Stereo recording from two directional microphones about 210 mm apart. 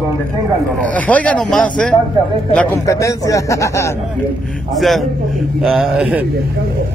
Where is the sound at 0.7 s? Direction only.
5° left (ahead or behind).